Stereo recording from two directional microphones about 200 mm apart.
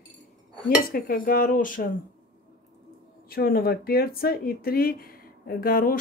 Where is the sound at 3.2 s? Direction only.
50° left (ahead or behind).